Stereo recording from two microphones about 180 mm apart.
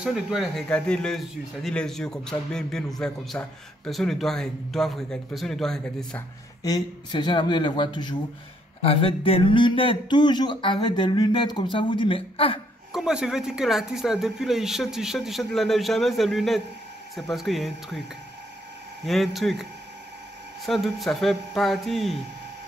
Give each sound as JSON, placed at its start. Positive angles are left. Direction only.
{"t": 0.0, "sound": "a man's voice", "side_deg": -5}
{"t": 6.6, "sound": "speech", "side_deg": 25}
{"t": 12.9, "sound": "a man's voice", "side_deg": -5}
{"t": 19.0, "sound": "a man's voice", "side_deg": 0}